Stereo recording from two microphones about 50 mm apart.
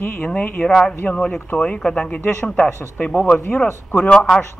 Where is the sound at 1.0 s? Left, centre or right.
Centre.